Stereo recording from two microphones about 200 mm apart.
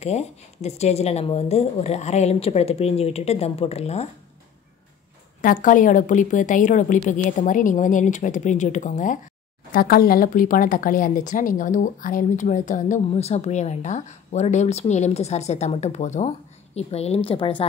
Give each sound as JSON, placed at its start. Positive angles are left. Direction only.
{"t": 0.0, "sound": "speech", "side_deg": 35}
{"t": 5.4, "sound": "speech", "side_deg": 45}